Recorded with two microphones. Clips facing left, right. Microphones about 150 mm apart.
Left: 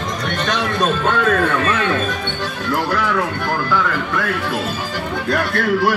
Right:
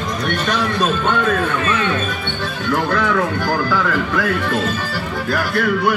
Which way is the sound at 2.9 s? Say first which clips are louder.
Right 2 dB; centre (ahead or behind).